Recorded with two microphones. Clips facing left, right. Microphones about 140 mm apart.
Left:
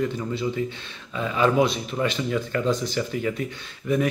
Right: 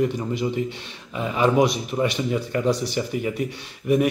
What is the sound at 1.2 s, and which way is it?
Speech, 15° right (ahead or behind).